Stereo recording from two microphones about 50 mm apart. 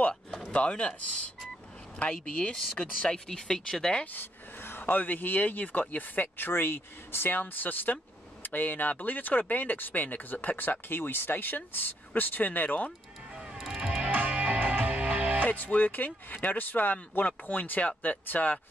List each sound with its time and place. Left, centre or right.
0.5 s speech: left
4.0 s speech: left
13.7 s music: right
14.1 s music: right
15.4 s speech: left